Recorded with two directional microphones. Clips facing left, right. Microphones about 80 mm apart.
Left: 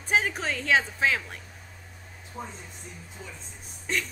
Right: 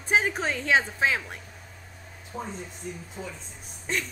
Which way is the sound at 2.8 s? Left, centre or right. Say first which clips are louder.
Right 11 dB; right.